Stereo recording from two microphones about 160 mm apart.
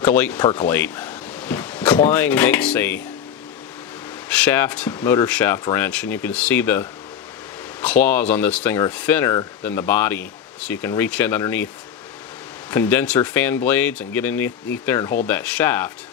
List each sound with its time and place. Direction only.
0.0 s speech: 10° left (ahead or behind)
4.3 s speech: 10° left (ahead or behind)
12.7 s speech: 10° left (ahead or behind)